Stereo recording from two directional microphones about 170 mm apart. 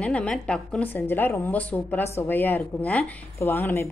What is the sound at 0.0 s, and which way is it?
Speech, 5° left (ahead or behind).